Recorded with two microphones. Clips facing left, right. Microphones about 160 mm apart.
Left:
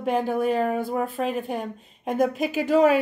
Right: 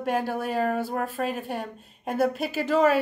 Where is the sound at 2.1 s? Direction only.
15° left (ahead or behind).